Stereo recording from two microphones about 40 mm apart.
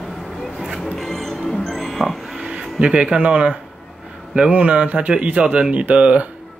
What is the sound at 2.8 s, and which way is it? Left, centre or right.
Speech, right.